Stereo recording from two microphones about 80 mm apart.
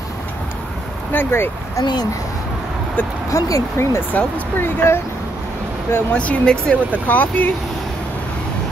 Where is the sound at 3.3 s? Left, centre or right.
Left.